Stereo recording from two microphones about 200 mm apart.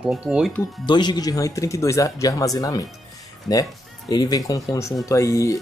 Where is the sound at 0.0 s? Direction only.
5° right (ahead or behind).